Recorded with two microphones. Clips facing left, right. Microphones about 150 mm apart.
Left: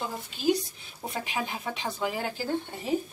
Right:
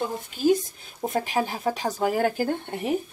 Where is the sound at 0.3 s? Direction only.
50° right (ahead or behind).